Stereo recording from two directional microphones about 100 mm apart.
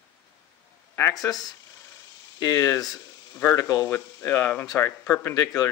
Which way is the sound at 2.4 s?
40° left (ahead or behind).